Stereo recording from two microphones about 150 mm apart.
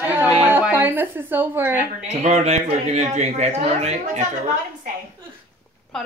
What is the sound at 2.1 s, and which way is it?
A man's voice, 45° right (ahead or behind).